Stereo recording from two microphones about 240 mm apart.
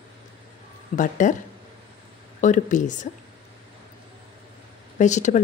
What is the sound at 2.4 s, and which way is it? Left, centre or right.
Speech, left.